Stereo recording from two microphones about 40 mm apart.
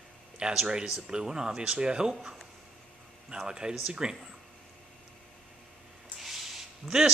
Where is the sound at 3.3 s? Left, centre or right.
Centre.